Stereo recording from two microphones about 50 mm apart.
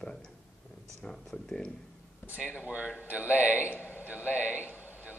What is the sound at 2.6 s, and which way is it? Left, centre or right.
Speech, right.